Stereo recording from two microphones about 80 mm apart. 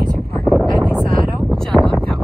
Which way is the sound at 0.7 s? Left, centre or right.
Centre.